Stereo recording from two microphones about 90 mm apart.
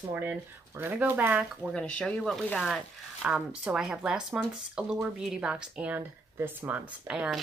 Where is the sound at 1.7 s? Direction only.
5° left (ahead or behind); by 6.0 s 10° right (ahead or behind).